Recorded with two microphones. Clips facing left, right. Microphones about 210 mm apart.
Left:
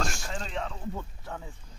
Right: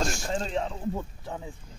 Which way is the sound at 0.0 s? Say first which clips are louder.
Right 5 dB; 30° right (ahead or behind).